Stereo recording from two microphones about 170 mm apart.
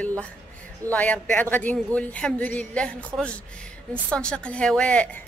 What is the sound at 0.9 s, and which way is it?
A woman's voice, 5° left (ahead or behind).